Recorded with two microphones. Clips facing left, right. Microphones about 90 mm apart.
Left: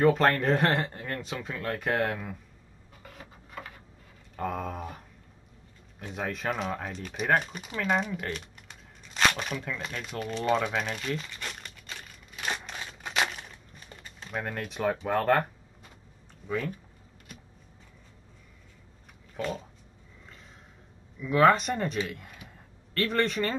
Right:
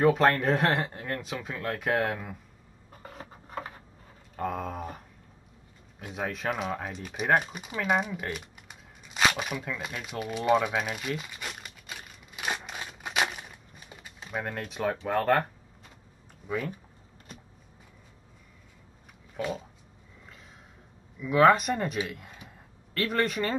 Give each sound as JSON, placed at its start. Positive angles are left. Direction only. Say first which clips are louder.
{"t": 0.0, "sound": "speech", "louder": "even", "side_deg": -5}
{"t": 2.9, "sound": "a sound", "louder": "right 4 dB", "side_deg": -40}
{"t": 4.4, "sound": "speech", "louder": "even", "side_deg": 0}
{"t": 5.9, "sound": "a sound", "louder": "even", "side_deg": -5}
{"t": 14.7, "sound": "speech", "louder": "left 1 dB", "side_deg": 0}
{"t": 16.4, "sound": "speech", "louder": "even", "side_deg": -10}
{"t": 17.3, "sound": "a sound", "louder": "right 1 dB", "side_deg": -35}
{"t": 19.3, "sound": "speech", "louder": "even", "side_deg": -5}
{"t": 21.2, "sound": "speech", "louder": "right 1 dB", "side_deg": -5}